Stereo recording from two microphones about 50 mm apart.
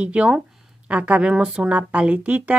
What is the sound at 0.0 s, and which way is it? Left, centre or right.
A woman's voice, right.